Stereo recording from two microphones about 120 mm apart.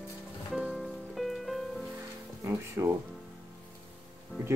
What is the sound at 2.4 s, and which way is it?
Speech, 25° right (ahead or behind).